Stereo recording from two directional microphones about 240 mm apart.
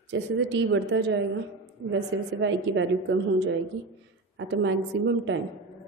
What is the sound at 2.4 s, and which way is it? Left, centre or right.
A woman's voice, right.